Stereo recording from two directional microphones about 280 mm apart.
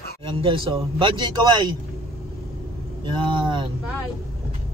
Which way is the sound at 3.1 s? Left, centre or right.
Centre.